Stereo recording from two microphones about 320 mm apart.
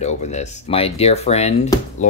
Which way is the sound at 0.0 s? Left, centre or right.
Left.